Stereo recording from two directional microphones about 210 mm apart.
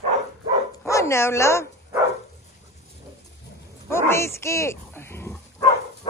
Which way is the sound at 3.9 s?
10° left (ahead or behind).